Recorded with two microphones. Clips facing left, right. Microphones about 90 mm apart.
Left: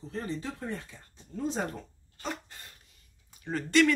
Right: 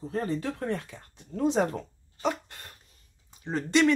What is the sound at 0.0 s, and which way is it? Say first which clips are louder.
Speech: right 6 dB; 50° right (ahead or behind).